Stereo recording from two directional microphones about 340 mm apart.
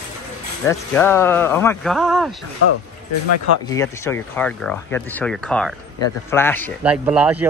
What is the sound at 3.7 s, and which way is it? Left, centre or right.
Speech, centre.